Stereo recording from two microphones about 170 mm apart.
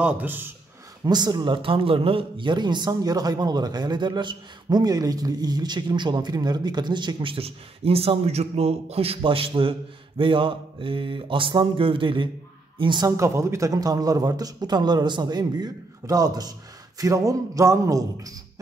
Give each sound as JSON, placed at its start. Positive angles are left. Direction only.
{"t": 0.0, "sound": "speech", "side_deg": -10}
{"t": 1.0, "sound": "speech", "side_deg": -25}